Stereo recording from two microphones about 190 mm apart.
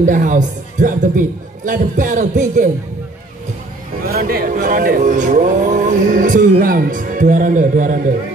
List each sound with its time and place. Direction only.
0.0 s speech: 40° right (ahead or behind)
4.1 s speech: 50° right (ahead or behind)